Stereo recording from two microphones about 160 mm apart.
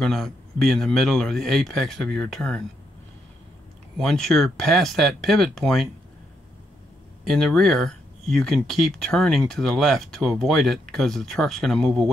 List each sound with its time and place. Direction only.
0.0 s speech: centre (ahead or behind)
4.0 s speech: 5° left (ahead or behind)
7.2 s speech: centre (ahead or behind)